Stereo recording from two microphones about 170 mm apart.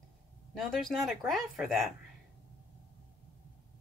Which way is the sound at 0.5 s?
Centre (ahead or behind).